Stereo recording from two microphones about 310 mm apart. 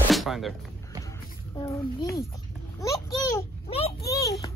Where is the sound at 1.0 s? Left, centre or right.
Centre.